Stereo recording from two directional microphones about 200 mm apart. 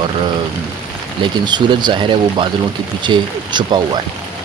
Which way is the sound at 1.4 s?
20° right (ahead or behind).